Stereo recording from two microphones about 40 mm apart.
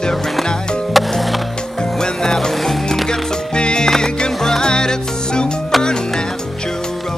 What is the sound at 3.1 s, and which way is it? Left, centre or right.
Music, left.